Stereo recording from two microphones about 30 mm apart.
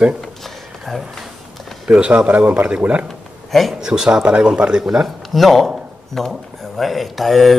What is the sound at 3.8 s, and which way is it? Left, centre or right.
Speech, right.